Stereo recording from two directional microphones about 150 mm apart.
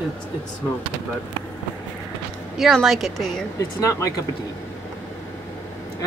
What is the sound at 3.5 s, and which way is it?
Speech, 20° left (ahead or behind).